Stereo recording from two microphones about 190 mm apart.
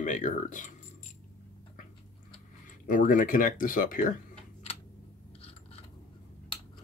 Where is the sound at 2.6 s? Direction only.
45° left (ahead or behind).